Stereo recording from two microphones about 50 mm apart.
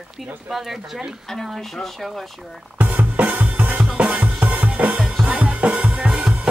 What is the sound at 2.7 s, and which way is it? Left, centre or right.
Music, right.